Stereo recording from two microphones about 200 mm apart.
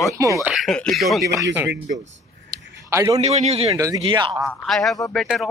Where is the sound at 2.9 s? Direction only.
15° right (ahead or behind).